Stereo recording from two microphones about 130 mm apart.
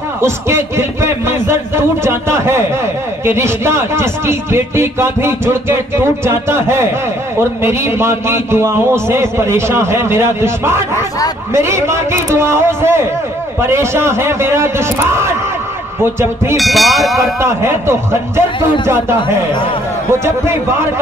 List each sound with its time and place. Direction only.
0.2 s speech: 20° right (ahead or behind)
16.5 s speech: centre (ahead or behind)
17.4 s speech: 20° right (ahead or behind)